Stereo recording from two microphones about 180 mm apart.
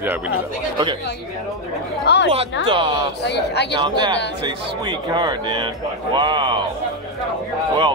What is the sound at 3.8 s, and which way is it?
Speech, 25° right (ahead or behind).